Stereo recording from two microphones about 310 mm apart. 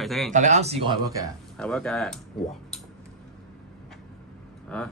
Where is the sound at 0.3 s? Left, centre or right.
Right.